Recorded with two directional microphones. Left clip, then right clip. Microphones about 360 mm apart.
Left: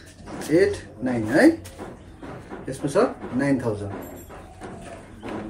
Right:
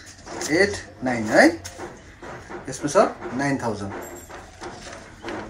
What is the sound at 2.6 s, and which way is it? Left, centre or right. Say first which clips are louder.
Speech: right 3 dB; centre.